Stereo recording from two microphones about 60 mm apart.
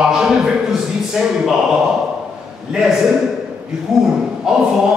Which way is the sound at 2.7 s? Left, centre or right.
Centre.